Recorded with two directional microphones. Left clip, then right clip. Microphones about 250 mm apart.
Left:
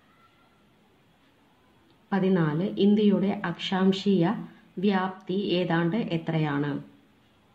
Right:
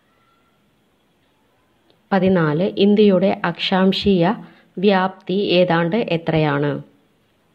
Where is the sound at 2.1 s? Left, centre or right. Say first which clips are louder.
Right 9 dB; right.